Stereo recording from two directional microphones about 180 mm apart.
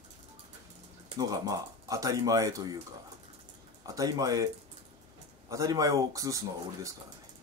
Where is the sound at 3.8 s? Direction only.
20° right (ahead or behind).